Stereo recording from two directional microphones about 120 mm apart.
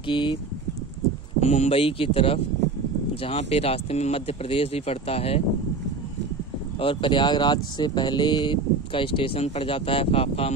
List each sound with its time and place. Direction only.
0.0 s speech: 40° left (ahead or behind)
1.4 s speech: 65° left (ahead or behind)
6.8 s speech: 45° left (ahead or behind)